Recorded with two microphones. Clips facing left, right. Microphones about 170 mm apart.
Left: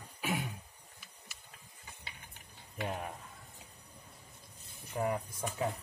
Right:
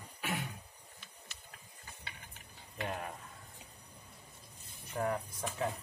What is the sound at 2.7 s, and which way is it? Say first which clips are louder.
Speech: left 1 dB; 5° left (ahead or behind).